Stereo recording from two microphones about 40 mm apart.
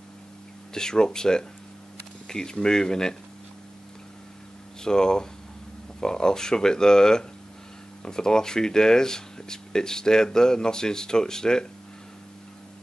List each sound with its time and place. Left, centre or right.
0.7 s speech: centre
4.8 s speech: centre